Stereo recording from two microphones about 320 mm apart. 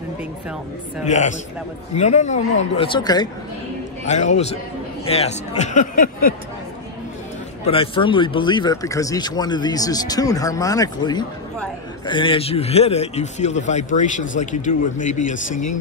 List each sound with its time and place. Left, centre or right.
1.0 s speech: left
4.0 s speech: left
7.6 s speech: centre